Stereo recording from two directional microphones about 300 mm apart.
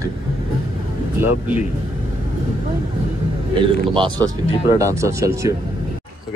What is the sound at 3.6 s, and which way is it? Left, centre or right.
Speech, centre.